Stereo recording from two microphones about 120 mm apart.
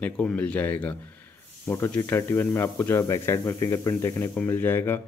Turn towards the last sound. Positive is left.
turn(degrees=15)  # may be behind; listen again after turning